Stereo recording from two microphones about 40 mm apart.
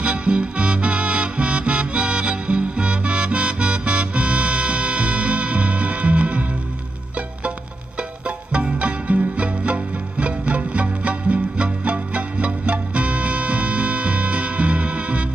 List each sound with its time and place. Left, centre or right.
0.0 s music: right
8.3 s music: right